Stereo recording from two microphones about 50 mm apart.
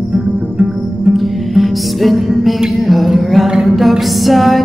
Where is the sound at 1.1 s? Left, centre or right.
Centre.